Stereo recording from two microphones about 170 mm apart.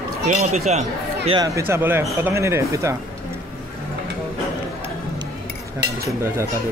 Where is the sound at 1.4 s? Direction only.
15° right (ahead or behind).